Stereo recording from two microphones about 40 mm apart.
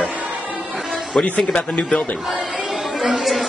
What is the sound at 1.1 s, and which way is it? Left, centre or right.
Speech, centre.